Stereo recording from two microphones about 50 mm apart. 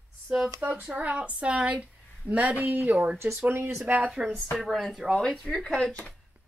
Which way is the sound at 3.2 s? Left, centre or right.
Right.